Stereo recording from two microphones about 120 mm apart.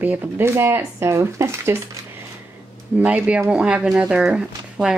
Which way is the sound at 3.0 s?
10° right (ahead or behind).